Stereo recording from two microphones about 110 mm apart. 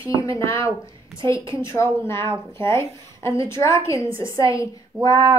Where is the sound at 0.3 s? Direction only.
25° left (ahead or behind).